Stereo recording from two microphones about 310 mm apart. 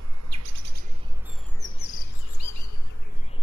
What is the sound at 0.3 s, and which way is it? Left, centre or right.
Chirp, right.